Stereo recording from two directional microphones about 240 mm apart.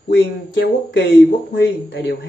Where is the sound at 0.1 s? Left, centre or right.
Left.